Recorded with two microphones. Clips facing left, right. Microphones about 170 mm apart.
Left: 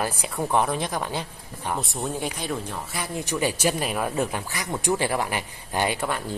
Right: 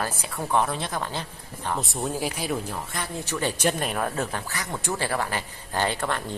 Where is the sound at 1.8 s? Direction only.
Centre (ahead or behind).